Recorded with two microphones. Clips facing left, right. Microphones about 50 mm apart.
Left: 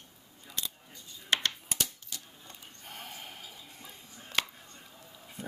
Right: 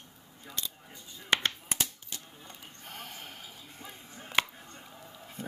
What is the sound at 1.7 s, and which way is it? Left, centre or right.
Typewriter, right.